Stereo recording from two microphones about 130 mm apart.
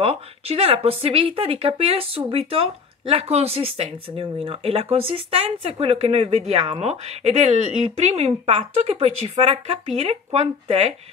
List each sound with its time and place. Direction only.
0.0 s speech: 50° right (ahead or behind)